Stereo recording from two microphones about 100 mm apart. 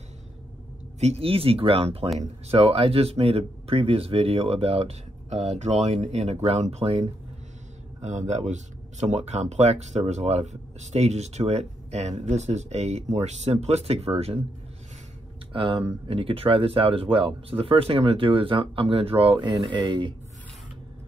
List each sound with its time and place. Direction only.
1.0 s speech: 80° right
2.4 s speech: 85° right
9.2 s speech: 90° right
15.5 s speech: 60° right (ahead or behind)